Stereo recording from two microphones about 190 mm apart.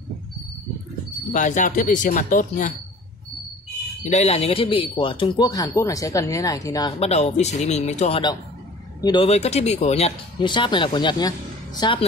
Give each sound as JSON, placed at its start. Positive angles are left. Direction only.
{"t": 1.3, "sound": "speech", "side_deg": 40}
{"t": 4.0, "sound": "speech", "side_deg": 35}
{"t": 7.0, "sound": "speech", "side_deg": 35}